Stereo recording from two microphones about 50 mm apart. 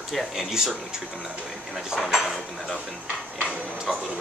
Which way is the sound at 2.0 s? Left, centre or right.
Centre.